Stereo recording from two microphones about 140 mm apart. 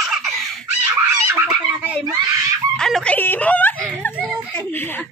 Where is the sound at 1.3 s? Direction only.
15° right (ahead or behind).